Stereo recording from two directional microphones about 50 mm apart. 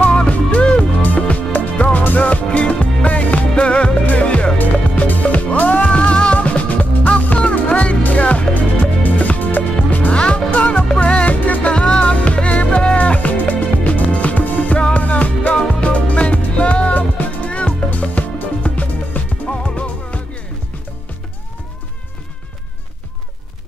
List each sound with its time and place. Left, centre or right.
0.0 s music: left
2.4 s music: left
4.6 s music: left
10.1 s music: left
11.7 s music: centre